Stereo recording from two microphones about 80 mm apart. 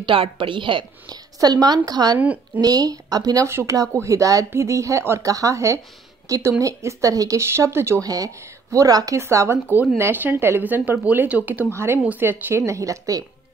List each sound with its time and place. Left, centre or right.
0.0 s a woman's voice: right
2.1 s speech: centre
2.6 s speech: right
3.4 s speech: right
7.4 s speech: right
8.0 s speech: right
9.2 s speech: right; by 11.6 s centre
11.7 s speech: right
12.6 s speech: right